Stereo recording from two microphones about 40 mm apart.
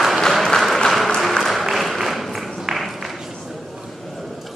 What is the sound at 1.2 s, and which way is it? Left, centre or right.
Applause, centre.